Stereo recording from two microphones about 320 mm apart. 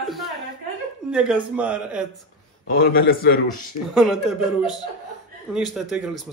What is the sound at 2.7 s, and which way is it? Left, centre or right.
Speech, left.